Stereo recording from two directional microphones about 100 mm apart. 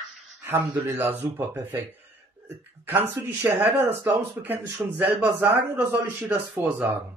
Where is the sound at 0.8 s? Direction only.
25° right (ahead or behind).